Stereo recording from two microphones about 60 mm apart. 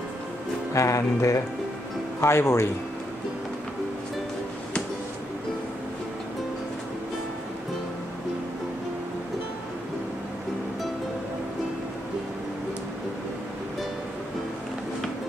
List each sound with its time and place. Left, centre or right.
0.7 s music: left
2.1 s speech: left